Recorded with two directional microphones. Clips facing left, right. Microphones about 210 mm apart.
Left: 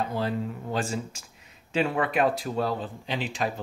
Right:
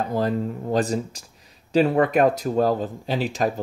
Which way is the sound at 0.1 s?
40° right (ahead or behind).